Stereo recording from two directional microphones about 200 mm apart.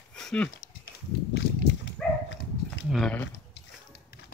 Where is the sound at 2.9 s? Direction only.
5° left (ahead or behind).